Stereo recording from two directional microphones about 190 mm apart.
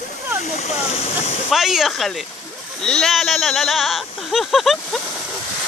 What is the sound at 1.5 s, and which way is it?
Speech, centre (ahead or behind).